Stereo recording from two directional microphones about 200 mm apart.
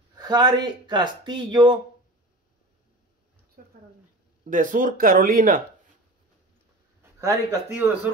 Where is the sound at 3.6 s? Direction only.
45° right (ahead or behind).